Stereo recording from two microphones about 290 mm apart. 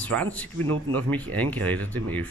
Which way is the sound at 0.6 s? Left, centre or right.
Right.